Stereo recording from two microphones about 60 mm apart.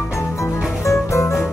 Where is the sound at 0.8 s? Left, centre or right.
Left.